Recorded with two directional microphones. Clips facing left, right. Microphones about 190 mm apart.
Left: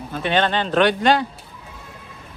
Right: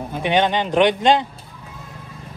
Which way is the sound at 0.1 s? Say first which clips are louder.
Right 1 dB; 15° right (ahead or behind).